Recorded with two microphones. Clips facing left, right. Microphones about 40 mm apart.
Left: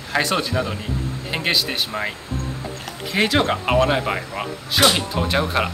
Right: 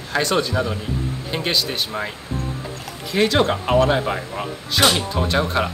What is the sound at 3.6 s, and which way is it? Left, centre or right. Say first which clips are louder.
Speech: right 1 dB; left.